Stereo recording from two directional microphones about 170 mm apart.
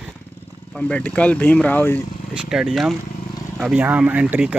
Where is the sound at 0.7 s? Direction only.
5° left (ahead or behind).